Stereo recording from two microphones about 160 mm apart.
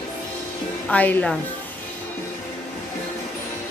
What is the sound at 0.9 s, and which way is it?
Music, 10° left (ahead or behind).